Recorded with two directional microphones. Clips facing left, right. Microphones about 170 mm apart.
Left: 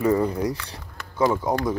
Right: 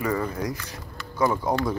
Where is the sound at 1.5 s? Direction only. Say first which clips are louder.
Left 1 dB; 20° left (ahead or behind).